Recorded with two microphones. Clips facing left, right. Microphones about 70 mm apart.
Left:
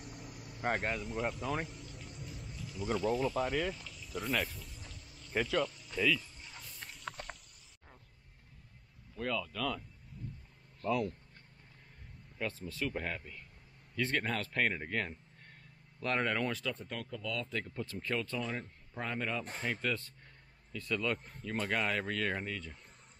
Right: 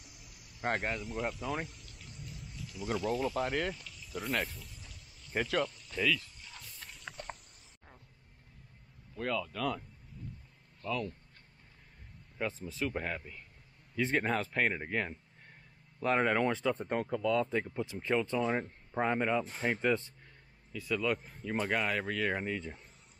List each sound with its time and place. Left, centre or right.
0.0 s cricket: left
0.6 s a sound: centre
9.1 s speech: centre
10.8 s speech: centre
12.4 s speech: centre
16.7 s speech: right
20.7 s speech: centre